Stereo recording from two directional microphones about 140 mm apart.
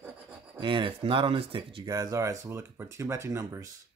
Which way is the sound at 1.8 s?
25° right (ahead or behind).